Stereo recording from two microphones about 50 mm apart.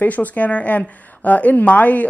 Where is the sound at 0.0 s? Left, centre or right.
Left.